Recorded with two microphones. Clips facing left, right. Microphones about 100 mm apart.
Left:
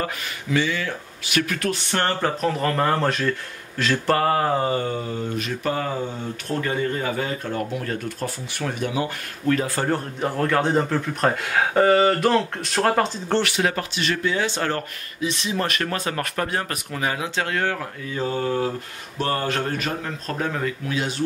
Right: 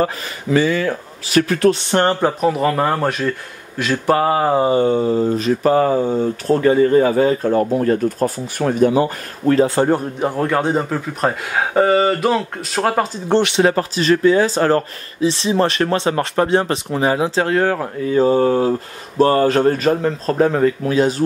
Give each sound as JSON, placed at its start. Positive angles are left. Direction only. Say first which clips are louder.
{"t": 0.0, "sound": "speech", "louder": "right 8 dB", "side_deg": -40}
{"t": 13.3, "sound": "speech", "louder": "right 7 dB", "side_deg": -20}